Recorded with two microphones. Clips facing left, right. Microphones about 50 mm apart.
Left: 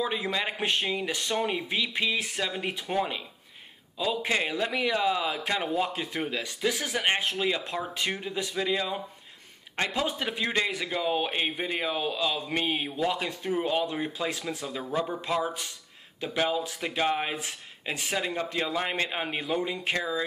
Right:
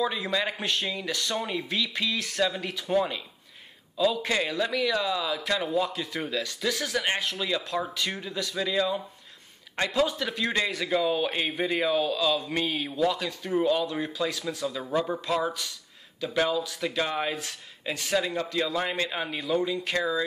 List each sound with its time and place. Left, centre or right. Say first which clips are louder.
0.1 s a man's voice: right 1 dB; left
16.4 s a man's voice: right 1 dB; left
20.0 s speech: right 5 dB; centre